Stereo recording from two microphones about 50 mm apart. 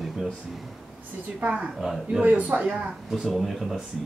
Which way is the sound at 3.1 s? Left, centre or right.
Centre.